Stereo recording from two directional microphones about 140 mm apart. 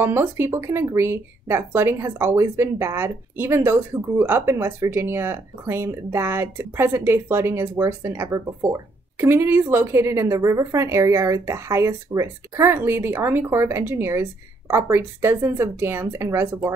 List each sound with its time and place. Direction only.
0.0 s speech: 15° right (ahead or behind)